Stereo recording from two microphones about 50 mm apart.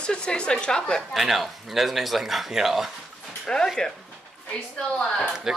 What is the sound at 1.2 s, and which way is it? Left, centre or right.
Speech, centre.